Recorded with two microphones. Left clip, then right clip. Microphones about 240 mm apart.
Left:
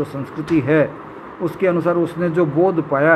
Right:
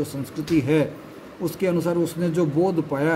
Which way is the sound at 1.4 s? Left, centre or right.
Right.